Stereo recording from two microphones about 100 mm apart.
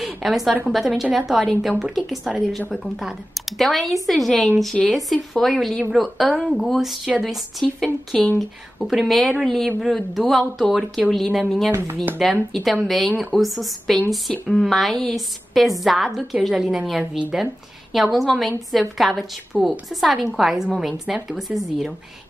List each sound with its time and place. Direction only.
0.0 s a woman's voice: 5° right (ahead or behind)
7.6 s a woman's voice: 5° left (ahead or behind)
11.7 s speech: 20° right (ahead or behind)
12.2 s a woman's voice: centre (ahead or behind)
17.9 s a woman's voice: centre (ahead or behind)